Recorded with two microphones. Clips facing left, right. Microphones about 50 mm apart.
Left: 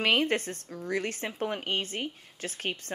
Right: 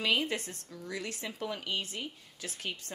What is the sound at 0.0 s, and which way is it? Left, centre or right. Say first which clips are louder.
A woman's voice: left 5 dB; left.